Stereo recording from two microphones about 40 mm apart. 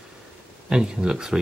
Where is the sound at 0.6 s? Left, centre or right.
Centre.